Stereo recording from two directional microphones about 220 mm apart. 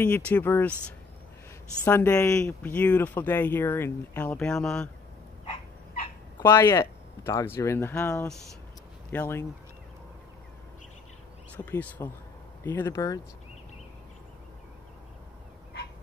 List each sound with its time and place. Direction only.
0.3 s speech: 10° left (ahead or behind)
1.9 s speech: 10° left (ahead or behind)
5.4 s dog: 25° left (ahead or behind)
6.4 s speech: 10° left (ahead or behind)
11.5 s speech: 10° left (ahead or behind)